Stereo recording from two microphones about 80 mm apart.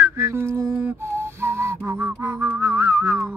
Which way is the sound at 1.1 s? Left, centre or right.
Right.